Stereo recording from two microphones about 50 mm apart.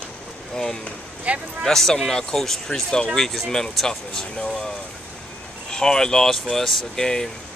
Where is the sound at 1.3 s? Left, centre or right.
Right.